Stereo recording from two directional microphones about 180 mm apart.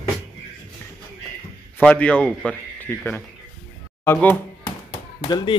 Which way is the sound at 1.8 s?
5° left (ahead or behind).